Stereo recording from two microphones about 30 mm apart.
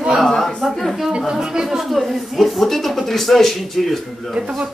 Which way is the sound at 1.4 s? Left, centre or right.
Right.